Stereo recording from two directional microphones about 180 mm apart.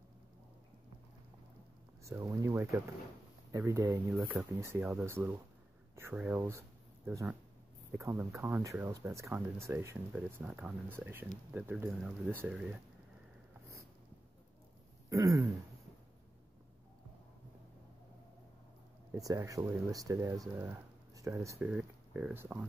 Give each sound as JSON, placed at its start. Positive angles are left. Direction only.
{"t": 2.0, "sound": "speech", "side_deg": -15}
{"t": 15.0, "sound": "throat clearing", "side_deg": -15}
{"t": 19.1, "sound": "speech", "side_deg": -20}